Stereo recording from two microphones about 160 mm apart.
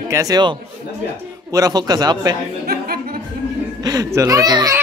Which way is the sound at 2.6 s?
75° right (ahead or behind).